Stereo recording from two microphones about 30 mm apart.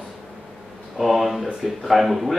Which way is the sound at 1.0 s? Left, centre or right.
Centre.